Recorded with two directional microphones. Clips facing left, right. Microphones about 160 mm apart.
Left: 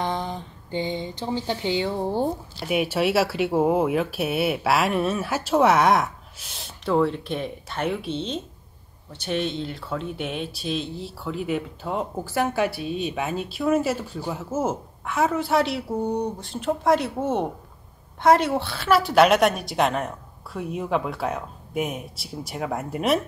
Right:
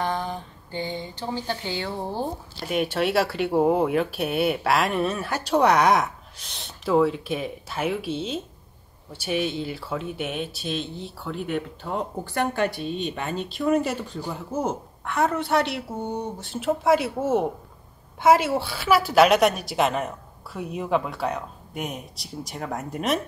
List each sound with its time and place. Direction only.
0.0 s speech: 20° left (ahead or behind)
2.7 s speech: 5° left (ahead or behind)